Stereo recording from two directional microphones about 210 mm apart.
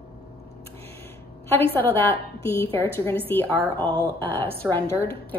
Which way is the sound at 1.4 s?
10° left (ahead or behind).